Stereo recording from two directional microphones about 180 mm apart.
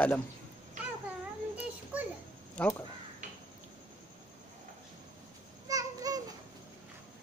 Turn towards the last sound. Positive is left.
turn(degrees=-20)  # may be behind; listen again after turning